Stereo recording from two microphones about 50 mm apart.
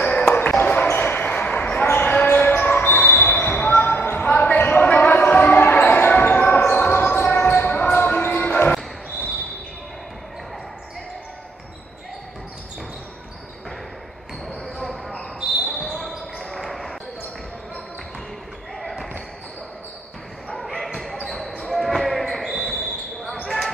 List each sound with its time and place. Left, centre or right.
0.2 s basketball bounce: left
15.8 s basketball bounce: centre
18.8 s basketball bounce: centre
20.7 s basketball bounce: centre